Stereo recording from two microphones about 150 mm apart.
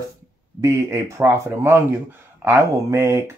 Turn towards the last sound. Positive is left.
turn(degrees=-20)  # may be behind; listen again after turning